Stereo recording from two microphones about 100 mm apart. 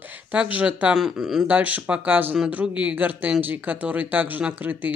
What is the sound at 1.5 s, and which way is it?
Speech, 15° right (ahead or behind).